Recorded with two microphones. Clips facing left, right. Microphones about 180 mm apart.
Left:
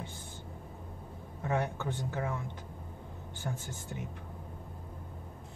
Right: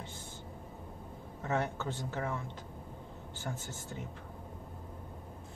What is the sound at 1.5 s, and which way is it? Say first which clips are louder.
Speech: left 1 dB; 15° left (ahead or behind).